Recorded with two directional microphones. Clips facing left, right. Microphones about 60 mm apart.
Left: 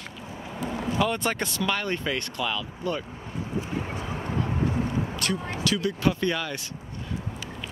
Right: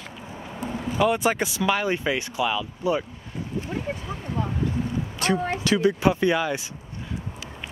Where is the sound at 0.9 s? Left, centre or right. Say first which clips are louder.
Right 5 dB; centre.